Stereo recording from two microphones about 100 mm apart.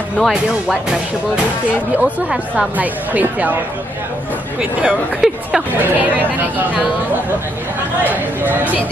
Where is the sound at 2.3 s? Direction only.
10° right (ahead or behind).